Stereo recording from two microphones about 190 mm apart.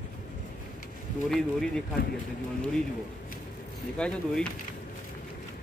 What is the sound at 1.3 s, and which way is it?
Speech, centre (ahead or behind).